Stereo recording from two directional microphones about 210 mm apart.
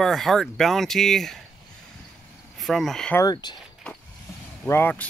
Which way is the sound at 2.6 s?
Centre (ahead or behind).